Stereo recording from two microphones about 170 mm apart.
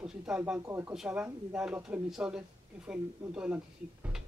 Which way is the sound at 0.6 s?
15° right (ahead or behind).